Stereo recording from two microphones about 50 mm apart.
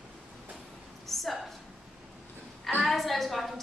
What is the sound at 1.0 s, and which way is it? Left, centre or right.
Speech, centre.